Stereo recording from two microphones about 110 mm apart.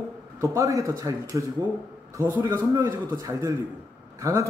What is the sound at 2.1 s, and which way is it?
A man's voice, 20° right (ahead or behind).